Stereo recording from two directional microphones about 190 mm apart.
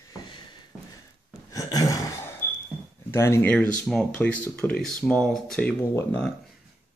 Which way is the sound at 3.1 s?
15° left (ahead or behind).